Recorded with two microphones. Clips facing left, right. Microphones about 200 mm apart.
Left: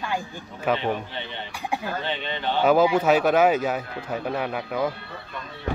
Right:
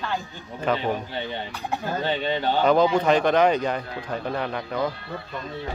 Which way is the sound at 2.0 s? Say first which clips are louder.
Right 4 dB; 40° right (ahead or behind).